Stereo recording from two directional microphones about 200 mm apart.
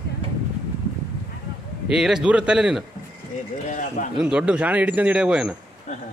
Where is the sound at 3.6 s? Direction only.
40° left (ahead or behind).